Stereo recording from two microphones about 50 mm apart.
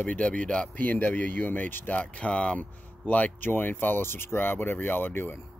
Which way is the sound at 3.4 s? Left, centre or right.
Left.